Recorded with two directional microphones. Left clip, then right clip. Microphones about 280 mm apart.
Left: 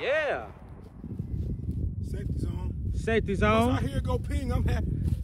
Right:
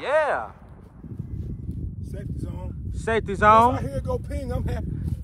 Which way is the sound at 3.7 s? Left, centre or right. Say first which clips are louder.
Right 6 dB; centre.